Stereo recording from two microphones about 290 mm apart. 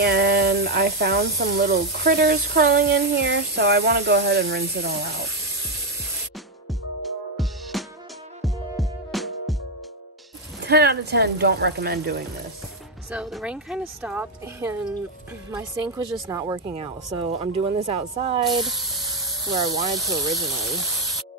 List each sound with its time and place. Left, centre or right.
0.0 s speech: right
7.7 s music: centre
10.6 s speech: right
13.1 s a woman's voice: centre